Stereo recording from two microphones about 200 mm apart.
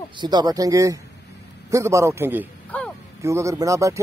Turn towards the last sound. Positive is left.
turn(degrees=-15)  # may be behind; listen again after turning